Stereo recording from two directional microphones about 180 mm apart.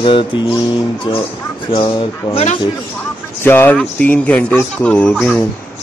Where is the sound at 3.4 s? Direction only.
10° left (ahead or behind).